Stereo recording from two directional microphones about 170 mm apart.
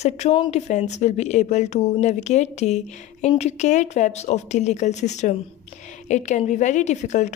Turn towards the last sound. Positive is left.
turn(degrees=45)  # may be behind; listen again after turning